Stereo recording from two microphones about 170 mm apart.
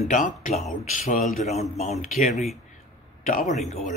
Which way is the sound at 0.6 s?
Centre (ahead or behind).